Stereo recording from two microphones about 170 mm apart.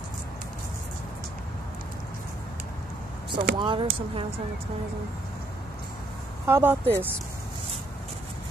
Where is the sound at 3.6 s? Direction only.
30° right (ahead or behind).